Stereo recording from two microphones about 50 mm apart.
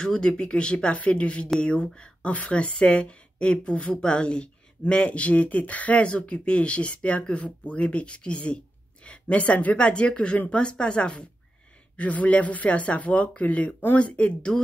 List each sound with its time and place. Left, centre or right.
0.0 s speech: centre
12.0 s speech: left